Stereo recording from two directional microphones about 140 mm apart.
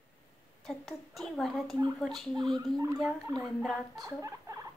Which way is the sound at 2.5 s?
25° right (ahead or behind).